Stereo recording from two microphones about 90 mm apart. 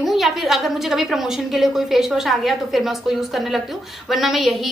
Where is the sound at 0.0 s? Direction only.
Centre (ahead or behind).